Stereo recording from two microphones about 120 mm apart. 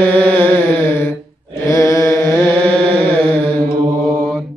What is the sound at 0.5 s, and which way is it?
Mantra, 20° left (ahead or behind).